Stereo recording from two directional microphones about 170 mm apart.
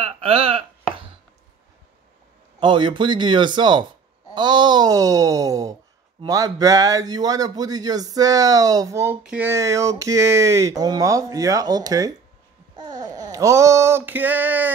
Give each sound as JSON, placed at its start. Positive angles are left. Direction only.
{"t": 0.0, "sound": "a sound", "side_deg": -35}
{"t": 2.6, "sound": "speech", "side_deg": -25}
{"t": 12.7, "sound": "babbling", "side_deg": -25}